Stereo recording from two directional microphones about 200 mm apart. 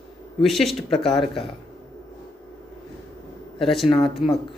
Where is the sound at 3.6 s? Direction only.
Centre (ahead or behind).